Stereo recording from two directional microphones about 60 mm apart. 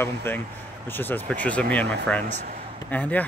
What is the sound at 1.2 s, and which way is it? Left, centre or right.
Speech, left.